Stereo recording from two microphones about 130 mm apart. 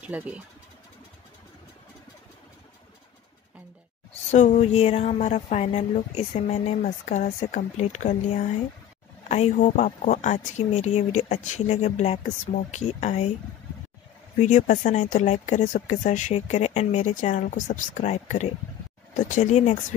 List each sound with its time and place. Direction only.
0.0 s speech: 10° right (ahead or behind)
4.3 s speech: 60° left (ahead or behind)
14.4 s speech: 70° left (ahead or behind)